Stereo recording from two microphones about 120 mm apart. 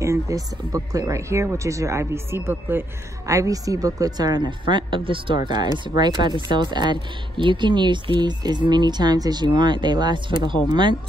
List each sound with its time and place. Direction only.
0.0 s a woman's voice: 25° right (ahead or behind); by 11.0 s 40° right (ahead or behind)